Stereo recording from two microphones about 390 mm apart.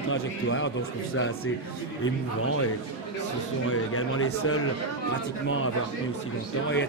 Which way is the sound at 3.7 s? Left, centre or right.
Left.